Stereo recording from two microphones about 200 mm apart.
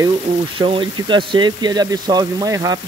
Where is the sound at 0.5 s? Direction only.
25° right (ahead or behind).